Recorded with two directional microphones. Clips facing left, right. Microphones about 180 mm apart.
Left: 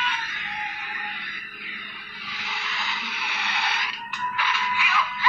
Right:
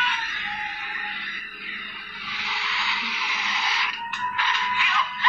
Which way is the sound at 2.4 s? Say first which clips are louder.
Right 1 dB; 50° left (ahead or behind).